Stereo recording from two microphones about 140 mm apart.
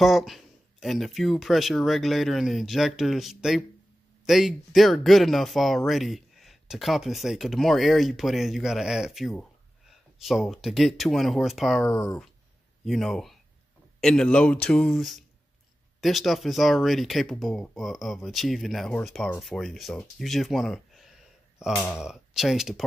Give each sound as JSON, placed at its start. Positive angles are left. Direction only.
{"t": 0.0, "sound": "speech", "side_deg": 0}
{"t": 11.9, "sound": "speech", "side_deg": 20}
{"t": 12.8, "sound": "speech", "side_deg": 0}